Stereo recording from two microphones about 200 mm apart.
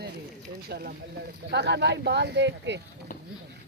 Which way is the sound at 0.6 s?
50° right (ahead or behind).